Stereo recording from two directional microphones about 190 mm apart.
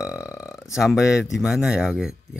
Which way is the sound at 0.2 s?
15° left (ahead or behind).